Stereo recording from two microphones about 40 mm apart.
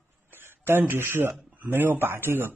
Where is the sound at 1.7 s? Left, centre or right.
Right.